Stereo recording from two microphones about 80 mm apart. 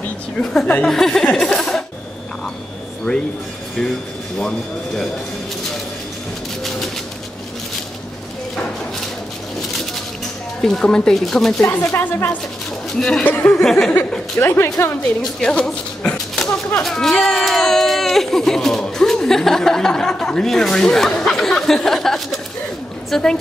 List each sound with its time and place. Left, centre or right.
0.4 s speech: centre
1.3 s a sound: centre
3.1 s speech: centre
4.4 s speech: centre
10.6 s speech: centre
11.6 s speech: left
13.6 s speech: centre
14.4 s speech: left
15.4 s a sound: centre
16.8 s a woman's voice: centre